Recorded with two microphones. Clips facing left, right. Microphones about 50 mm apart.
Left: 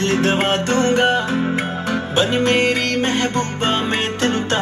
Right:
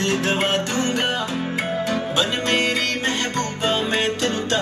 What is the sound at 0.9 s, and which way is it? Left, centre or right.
Music, left.